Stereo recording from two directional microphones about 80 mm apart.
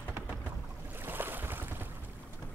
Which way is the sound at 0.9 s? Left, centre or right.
Right.